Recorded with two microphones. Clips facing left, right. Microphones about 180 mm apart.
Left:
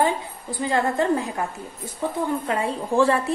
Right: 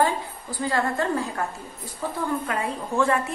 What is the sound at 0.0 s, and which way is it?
A woman's voice, 20° left (ahead or behind).